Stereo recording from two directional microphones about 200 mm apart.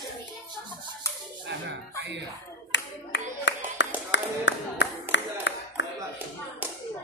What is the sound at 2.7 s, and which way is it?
Clapping, 60° left (ahead or behind).